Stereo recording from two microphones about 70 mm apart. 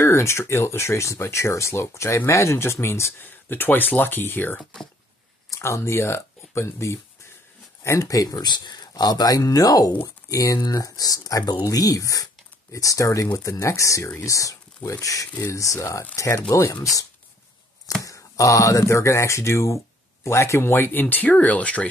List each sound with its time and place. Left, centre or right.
0.0 s speech: left
5.5 s speech: left
8.4 s speech: left
18.0 s speech: left; by 21.8 s centre